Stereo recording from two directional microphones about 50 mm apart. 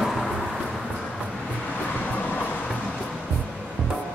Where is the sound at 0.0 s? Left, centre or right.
Centre.